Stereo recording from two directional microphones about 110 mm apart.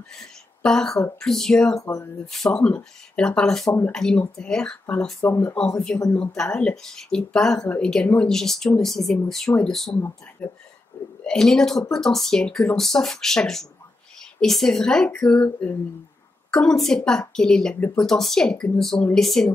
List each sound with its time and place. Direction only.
0.6 s speech: 5° left (ahead or behind)
1.8 s speech: 30° left (ahead or behind)
2.3 s speech: 5° left (ahead or behind)
6.1 s speech: 10° left (ahead or behind)